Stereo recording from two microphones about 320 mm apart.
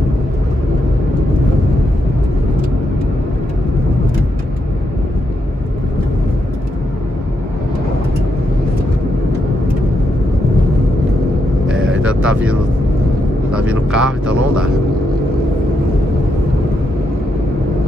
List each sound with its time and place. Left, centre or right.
11.8 s vehicle: right
12.1 s music: centre
13.7 s speech: centre